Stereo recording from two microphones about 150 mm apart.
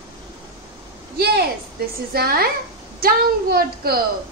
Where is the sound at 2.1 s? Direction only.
90° right.